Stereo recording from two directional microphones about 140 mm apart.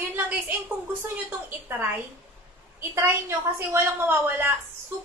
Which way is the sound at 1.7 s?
15° right (ahead or behind).